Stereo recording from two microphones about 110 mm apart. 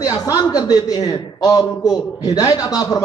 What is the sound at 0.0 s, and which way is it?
A man's voice, 30° left (ahead or behind).